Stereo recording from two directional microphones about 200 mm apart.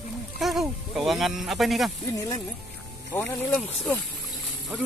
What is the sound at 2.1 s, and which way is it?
Speech, 15° left (ahead or behind).